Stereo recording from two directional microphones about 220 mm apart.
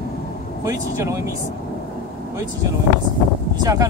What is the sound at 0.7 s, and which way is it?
Speech, 15° right (ahead or behind).